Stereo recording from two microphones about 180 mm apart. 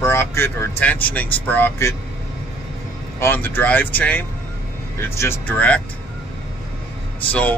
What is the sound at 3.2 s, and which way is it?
Speech, 10° left (ahead or behind).